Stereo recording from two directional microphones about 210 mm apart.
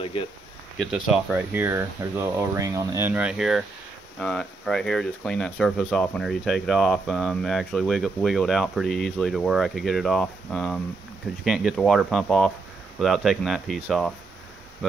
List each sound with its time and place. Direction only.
0.0 s speech: 25° left (ahead or behind)
0.7 s speech: 5° right (ahead or behind)